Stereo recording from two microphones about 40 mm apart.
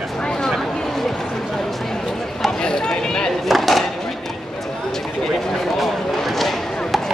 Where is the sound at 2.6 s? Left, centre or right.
Centre.